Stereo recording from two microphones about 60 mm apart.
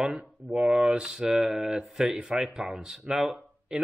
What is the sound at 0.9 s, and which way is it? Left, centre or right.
Speech, centre.